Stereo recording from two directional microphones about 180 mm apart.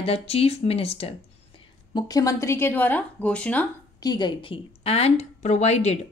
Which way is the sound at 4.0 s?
25° left (ahead or behind).